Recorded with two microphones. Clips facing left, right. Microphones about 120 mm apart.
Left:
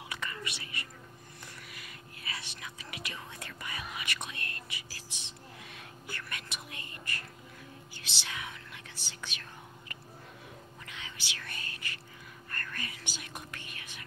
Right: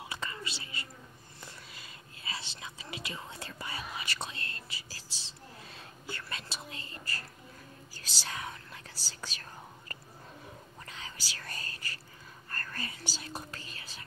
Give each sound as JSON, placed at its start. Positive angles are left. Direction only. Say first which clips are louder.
{"t": 0.1, "sound": "whispering", "louder": "left 2 dB", "side_deg": -25}